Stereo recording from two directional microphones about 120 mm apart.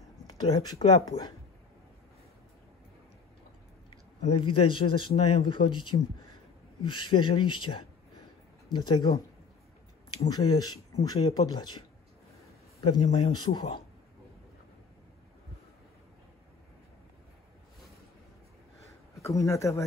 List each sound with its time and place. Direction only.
0.4 s a man's voice: 35° left (ahead or behind)
4.3 s a man's voice: 45° left (ahead or behind)
10.2 s a man's voice: 35° left (ahead or behind)
12.8 s a man's voice: 45° left (ahead or behind)
19.2 s speech: 25° left (ahead or behind)